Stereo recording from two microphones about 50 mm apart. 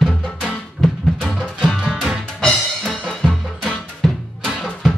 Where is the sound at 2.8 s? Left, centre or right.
Centre.